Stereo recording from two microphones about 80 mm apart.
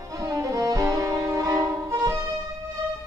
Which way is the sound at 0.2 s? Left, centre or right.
Right.